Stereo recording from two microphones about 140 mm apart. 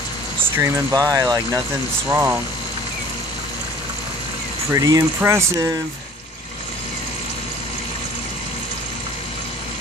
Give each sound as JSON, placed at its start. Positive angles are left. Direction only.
{"t": 0.6, "sound": "speech", "side_deg": -25}
{"t": 2.0, "sound": "speech", "side_deg": -10}
{"t": 4.7, "sound": "speech", "side_deg": -25}